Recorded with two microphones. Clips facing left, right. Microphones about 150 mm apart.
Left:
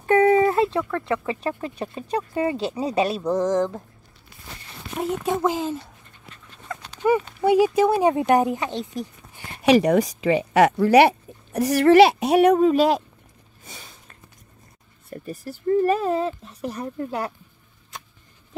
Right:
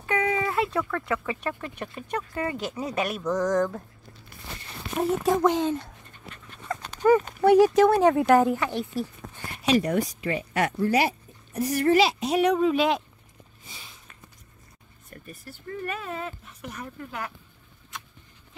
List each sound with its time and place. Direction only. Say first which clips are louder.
0.0 s a sound: left 10 dB; 45° left (ahead or behind)
0.7 s speech: left 3 dB; 25° left (ahead or behind)
5.1 s speech: right 1 dB; centre (ahead or behind)
6.7 s dog: right 2 dB; 50° right (ahead or behind)
7.0 s speech: right 1 dB; 15° left (ahead or behind)
9.6 s speech: left 6 dB; 75° left (ahead or behind); by 12.5 s 60° left (ahead or behind)
12.5 s speech: left 5 dB; 40° left (ahead or behind)
13.7 s a sound: left 4 dB; 45° left (ahead or behind)
15.0 s speech: left 10 dB; 35° left (ahead or behind)